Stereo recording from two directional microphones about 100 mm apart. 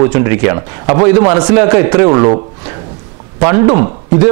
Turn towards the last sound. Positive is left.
turn(degrees=-20)  # may be behind; listen again after turning